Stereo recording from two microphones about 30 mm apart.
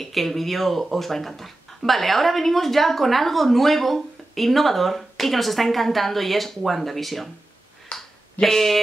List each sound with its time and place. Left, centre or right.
0.0 s speech: centre
7.9 s a sound: left
8.4 s speech: centre